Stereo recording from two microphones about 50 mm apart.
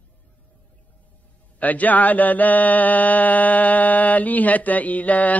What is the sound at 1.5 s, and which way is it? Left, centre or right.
Mantra, left.